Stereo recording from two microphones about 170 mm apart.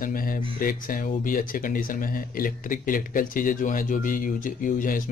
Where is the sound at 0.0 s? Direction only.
55° left (ahead or behind).